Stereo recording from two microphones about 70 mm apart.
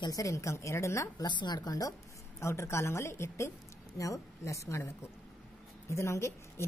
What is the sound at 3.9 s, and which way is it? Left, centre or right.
Speech, left.